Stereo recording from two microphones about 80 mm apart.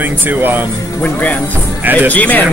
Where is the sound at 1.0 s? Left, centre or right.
Centre.